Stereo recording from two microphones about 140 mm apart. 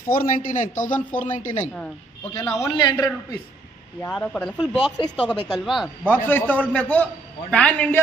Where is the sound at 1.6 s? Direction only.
10° left (ahead or behind).